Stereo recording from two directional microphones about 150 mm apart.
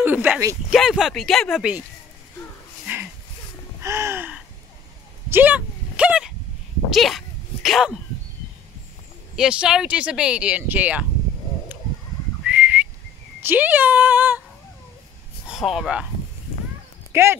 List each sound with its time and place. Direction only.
0.0 s speech: 10° right (ahead or behind)
2.9 s dog: 15° right (ahead or behind)
3.8 s gasp: 20° right (ahead or behind)
5.3 s a sound: 10° right (ahead or behind)
6.9 s sneeze: centre (ahead or behind)
9.3 s speech: 5° right (ahead or behind)
12.4 s whistling: 10° right (ahead or behind)
13.4 s speech: 15° right (ahead or behind)
15.4 s speech: 5° right (ahead or behind)
17.1 s speech: 15° right (ahead or behind)